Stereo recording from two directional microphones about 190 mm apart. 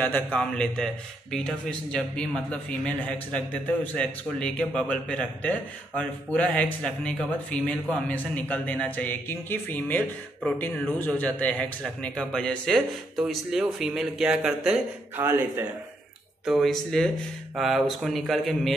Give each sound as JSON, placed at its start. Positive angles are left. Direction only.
{"t": 0.0, "sound": "a man's voice", "side_deg": 10}
{"t": 16.4, "sound": "a man's voice", "side_deg": 0}